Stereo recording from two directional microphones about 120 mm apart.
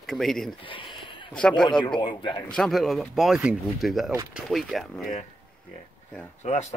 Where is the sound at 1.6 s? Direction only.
40° left (ahead or behind).